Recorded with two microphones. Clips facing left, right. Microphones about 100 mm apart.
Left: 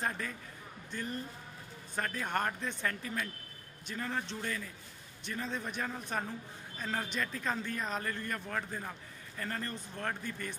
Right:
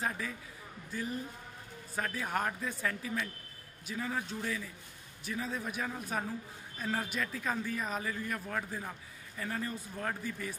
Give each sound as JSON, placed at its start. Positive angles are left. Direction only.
{"t": 0.0, "sound": "a man's voice", "side_deg": -5}